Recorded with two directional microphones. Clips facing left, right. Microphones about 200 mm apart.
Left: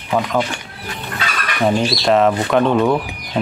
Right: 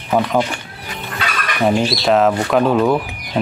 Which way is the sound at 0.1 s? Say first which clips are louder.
Right 2 dB; 5° right (ahead or behind).